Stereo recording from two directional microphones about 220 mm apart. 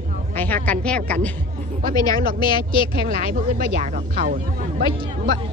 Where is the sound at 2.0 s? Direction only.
20° left (ahead or behind).